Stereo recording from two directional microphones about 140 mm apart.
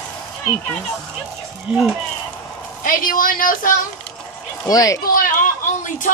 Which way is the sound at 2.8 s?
80° left.